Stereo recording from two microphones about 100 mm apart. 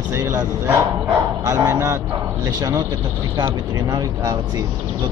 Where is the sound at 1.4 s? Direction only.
35° right (ahead or behind).